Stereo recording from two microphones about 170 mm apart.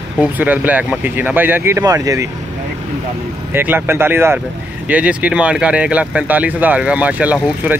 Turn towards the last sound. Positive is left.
turn(degrees=-10)  # may be behind; listen again after turning